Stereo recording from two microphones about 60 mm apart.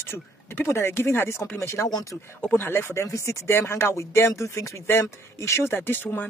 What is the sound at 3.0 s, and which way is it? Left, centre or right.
Speech, left.